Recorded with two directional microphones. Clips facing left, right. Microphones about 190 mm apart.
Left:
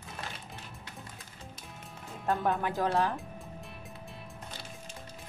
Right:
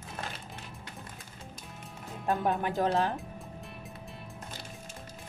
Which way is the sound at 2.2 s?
15° right (ahead or behind).